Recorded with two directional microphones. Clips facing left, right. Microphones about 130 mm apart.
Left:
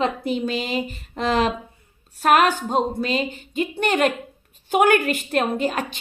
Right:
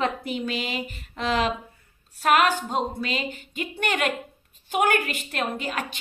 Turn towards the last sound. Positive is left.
turn(degrees=40)  # may be behind; listen again after turning